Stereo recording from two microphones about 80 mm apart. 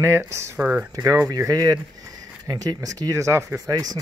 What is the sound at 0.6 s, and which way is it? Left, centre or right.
Speech, centre.